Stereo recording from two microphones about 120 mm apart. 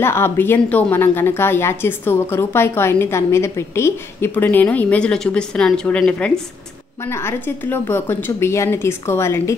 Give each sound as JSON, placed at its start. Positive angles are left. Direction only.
{"t": 0.0, "sound": "a woman's voice", "side_deg": 20}
{"t": 7.0, "sound": "a woman's voice", "side_deg": 20}